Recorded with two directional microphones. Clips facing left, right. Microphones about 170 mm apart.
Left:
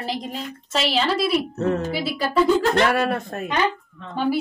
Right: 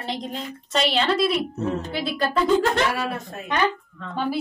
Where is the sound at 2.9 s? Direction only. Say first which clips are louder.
Left 6 dB; 55° left (ahead or behind).